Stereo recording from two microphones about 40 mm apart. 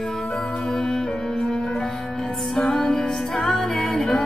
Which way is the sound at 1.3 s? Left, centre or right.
Centre.